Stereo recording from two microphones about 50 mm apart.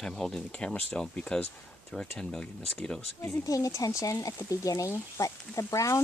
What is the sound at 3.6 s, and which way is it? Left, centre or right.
Speech, left.